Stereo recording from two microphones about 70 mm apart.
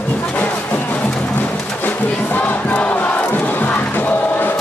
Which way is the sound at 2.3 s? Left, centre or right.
Left.